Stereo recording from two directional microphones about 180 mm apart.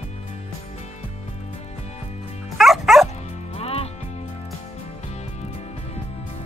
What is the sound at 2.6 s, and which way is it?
Music, centre (ahead or behind).